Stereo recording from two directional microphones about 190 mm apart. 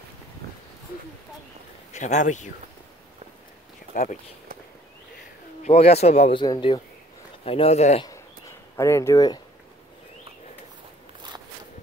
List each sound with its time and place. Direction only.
1.9 s a man's voice: 40° left (ahead or behind)
3.9 s speech: 45° left (ahead or behind)
5.6 s a man's voice: 35° left (ahead or behind)
8.0 s a sound: 15° left (ahead or behind)